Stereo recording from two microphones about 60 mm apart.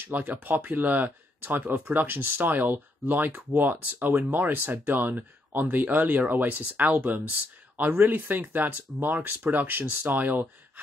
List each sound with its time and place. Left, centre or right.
0.0 s speech: right